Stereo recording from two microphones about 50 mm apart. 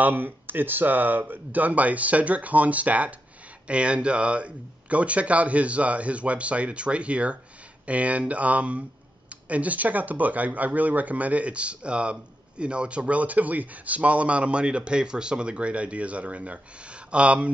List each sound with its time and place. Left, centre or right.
0.0 s speech: right